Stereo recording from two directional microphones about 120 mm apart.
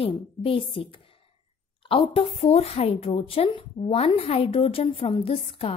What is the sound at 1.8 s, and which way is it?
A woman's voice, 50° left (ahead or behind).